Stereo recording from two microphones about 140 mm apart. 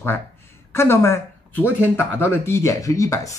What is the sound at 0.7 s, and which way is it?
A man's voice, 20° left (ahead or behind).